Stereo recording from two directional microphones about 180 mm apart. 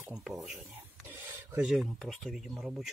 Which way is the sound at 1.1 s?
10° right (ahead or behind).